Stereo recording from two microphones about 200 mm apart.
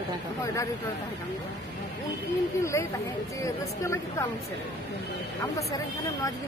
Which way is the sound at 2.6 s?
15° left (ahead or behind).